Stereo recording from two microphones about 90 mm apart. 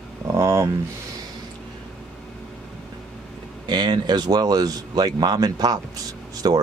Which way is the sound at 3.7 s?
50° right (ahead or behind).